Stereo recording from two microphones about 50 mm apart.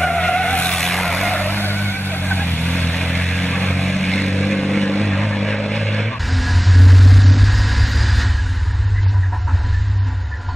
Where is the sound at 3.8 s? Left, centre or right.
Centre.